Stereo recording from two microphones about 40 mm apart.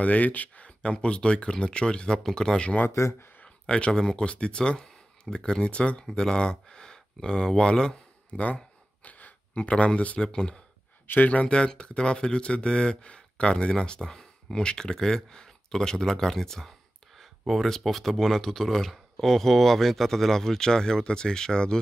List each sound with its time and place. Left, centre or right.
0.0 s speech: left
0.7 s speech: left
3.0 s speech: left
3.4 s a sound: left
4.2 s speech: left
6.1 s speech: centre
9.0 s gasp: left
9.6 s speech: left; by 16.7 s centre
17.2 s a sound: centre
17.6 s speech: centre